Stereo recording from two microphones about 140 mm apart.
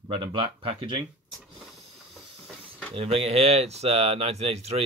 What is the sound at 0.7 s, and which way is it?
Speech, 45° right (ahead or behind).